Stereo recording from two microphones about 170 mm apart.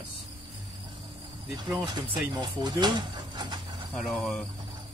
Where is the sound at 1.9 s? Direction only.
25° right (ahead or behind).